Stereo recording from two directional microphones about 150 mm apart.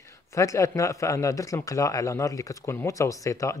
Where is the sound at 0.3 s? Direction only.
20° left (ahead or behind).